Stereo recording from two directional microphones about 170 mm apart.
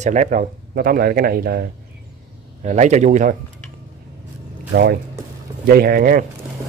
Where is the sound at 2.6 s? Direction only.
45° right (ahead or behind).